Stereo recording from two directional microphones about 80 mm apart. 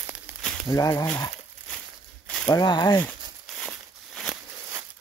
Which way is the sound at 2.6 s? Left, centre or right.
Left.